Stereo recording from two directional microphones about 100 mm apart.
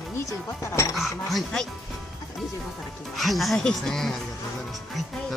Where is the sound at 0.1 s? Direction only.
30° left (ahead or behind).